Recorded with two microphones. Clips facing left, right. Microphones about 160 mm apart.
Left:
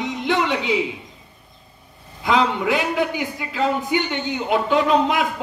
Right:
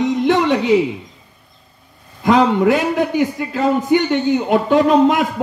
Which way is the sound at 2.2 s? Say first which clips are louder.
Right 7 dB; 45° right (ahead or behind).